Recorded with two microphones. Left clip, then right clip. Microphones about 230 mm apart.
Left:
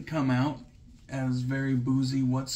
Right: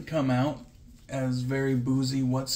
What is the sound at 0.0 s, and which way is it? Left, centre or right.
Speech, centre.